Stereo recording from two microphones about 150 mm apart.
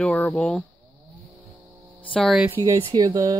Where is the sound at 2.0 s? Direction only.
5° left (ahead or behind).